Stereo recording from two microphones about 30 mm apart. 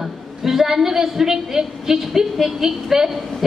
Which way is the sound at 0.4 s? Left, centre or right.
Centre.